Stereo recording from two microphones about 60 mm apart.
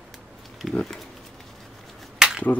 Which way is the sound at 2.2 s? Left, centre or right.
Centre.